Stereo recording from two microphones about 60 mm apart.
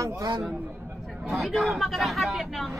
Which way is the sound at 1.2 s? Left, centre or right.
Centre.